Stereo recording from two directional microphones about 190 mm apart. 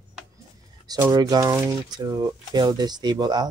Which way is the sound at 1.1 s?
20° right (ahead or behind).